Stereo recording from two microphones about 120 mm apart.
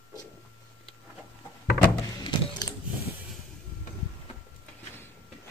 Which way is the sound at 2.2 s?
40° left (ahead or behind).